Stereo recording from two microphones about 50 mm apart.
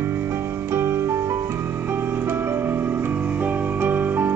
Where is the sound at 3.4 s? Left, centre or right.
Right.